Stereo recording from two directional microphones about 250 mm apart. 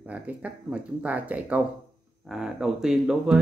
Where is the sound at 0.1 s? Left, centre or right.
Centre.